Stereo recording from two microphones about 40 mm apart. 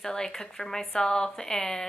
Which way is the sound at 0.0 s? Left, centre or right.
Centre.